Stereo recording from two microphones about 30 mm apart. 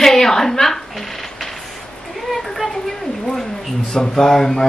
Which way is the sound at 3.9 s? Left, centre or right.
Centre.